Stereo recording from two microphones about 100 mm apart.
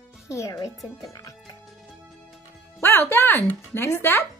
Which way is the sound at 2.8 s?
20° left (ahead or behind).